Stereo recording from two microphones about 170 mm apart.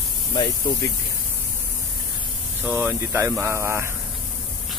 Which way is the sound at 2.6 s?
5° right (ahead or behind).